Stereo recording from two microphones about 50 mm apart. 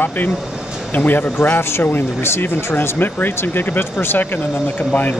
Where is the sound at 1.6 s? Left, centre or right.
Left.